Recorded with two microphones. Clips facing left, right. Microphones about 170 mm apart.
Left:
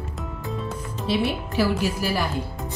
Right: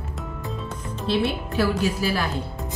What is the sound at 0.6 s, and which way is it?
A woman's voice, 10° left (ahead or behind).